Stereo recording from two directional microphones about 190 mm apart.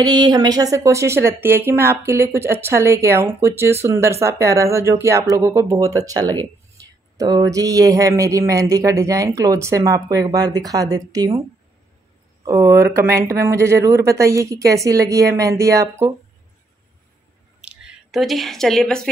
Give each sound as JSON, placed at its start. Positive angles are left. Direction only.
{"t": 0.0, "sound": "speech", "side_deg": -20}
{"t": 12.4, "sound": "speech", "side_deg": -15}
{"t": 17.6, "sound": "speech", "side_deg": -5}